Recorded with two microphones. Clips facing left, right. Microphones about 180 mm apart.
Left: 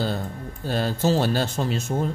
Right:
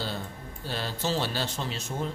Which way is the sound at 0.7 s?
45° left (ahead or behind).